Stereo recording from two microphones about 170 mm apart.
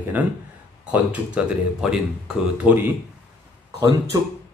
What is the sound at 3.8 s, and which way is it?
Speech, 20° right (ahead or behind).